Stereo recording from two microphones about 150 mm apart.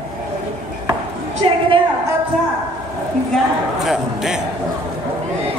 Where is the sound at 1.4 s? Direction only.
35° right (ahead or behind).